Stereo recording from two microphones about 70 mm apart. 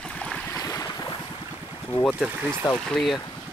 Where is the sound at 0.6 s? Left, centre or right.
Left.